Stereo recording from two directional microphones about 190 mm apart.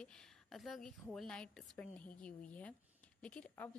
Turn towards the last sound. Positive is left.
turn(degrees=10)  # may be behind; listen again after turning